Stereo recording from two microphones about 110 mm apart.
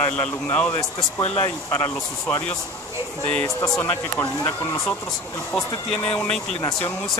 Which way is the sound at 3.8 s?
20° left (ahead or behind).